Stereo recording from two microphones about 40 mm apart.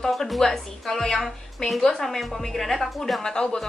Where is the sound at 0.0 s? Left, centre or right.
Centre.